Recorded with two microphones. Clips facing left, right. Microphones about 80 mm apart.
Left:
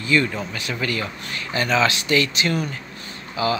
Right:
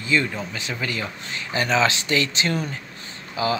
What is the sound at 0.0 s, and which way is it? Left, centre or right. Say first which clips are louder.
Speech: left 2 dB; centre.